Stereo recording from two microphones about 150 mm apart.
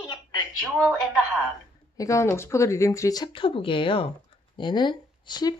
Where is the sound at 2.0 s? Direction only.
20° left (ahead or behind).